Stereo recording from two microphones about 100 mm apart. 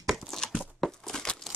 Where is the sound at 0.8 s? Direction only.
5° left (ahead or behind).